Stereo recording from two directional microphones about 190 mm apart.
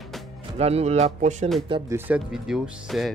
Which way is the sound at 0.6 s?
35° right (ahead or behind).